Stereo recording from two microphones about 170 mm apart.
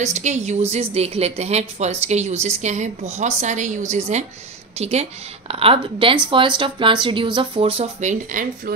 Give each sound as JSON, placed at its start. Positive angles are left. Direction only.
{"t": 0.0, "sound": "a woman's voice", "side_deg": -45}